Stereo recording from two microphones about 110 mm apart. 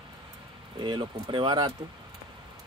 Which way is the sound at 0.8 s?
45° right (ahead or behind).